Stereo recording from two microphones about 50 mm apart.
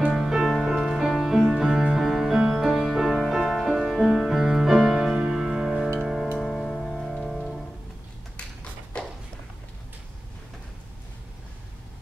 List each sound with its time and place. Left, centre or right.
0.3 s music: centre
5.0 s music: centre
9.0 s a sound: centre